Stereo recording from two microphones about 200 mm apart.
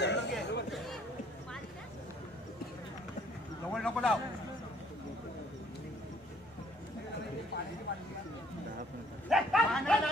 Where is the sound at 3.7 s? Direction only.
Centre (ahead or behind).